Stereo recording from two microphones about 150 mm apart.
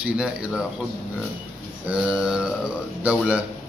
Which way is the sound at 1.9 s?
5° right (ahead or behind).